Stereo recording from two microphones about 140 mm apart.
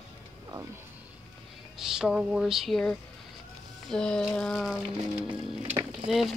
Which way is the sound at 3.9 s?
5° left (ahead or behind).